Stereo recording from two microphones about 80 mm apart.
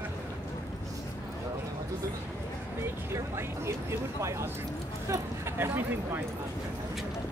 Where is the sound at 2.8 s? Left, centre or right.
Right.